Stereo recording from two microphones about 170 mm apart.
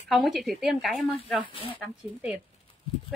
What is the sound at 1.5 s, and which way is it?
Speech, 30° left (ahead or behind).